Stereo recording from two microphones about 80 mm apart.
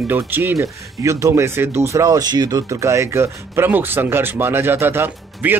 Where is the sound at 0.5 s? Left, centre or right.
Right.